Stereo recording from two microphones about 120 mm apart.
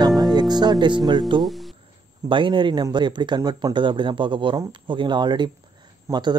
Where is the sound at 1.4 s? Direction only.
Centre (ahead or behind).